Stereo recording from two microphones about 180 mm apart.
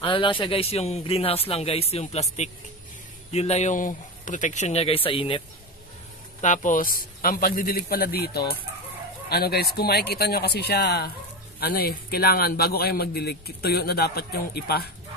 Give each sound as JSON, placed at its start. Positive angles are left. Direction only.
{"t": 0.0, "sound": "a man's voice", "side_deg": 30}
{"t": 6.4, "sound": "a man's voice", "side_deg": 45}